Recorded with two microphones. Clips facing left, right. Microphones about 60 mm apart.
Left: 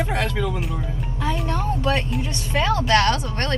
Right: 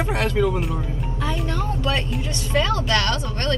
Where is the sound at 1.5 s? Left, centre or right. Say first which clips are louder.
Left 3 dB; left.